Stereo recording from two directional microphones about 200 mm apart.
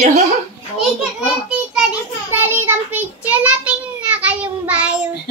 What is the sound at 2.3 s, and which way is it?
Child singing, 10° right (ahead or behind).